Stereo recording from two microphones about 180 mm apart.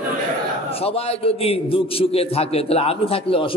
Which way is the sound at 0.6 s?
35° left (ahead or behind).